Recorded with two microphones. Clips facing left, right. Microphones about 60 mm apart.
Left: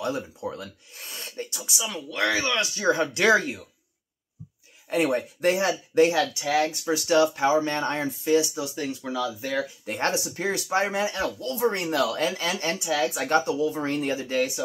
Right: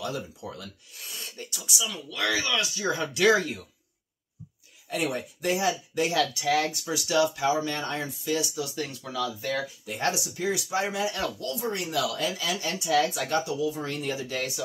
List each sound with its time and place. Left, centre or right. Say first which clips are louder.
0.0 s speech: left 4 dB; left
4.8 s speech: left 6 dB; left
6.0 s speech: left 2 dB; left
9.8 s speech: left 1 dB; left
12.7 s speech: right 1 dB; left
13.3 s speech: left 4 dB; left